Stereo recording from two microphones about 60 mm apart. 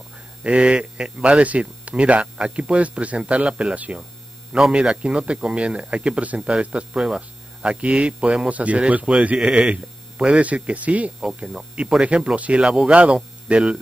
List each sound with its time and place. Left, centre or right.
0.4 s speech: centre
4.6 s speech: centre
5.0 s speech: centre